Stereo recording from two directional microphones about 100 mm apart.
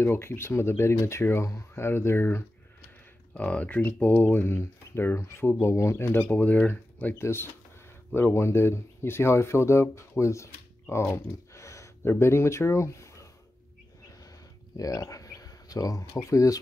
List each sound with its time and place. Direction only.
0.0 s speech: 25° left (ahead or behind)
3.3 s speech: 15° left (ahead or behind); by 11.1 s 30° left (ahead or behind)
11.5 s a sound: 30° left (ahead or behind)
14.8 s speech: 35° left (ahead or behind)